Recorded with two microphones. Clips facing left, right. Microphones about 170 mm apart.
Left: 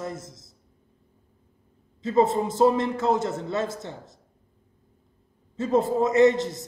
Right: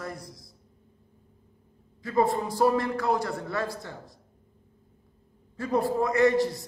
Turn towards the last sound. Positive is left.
turn(degrees=20)  # may be behind; listen again after turning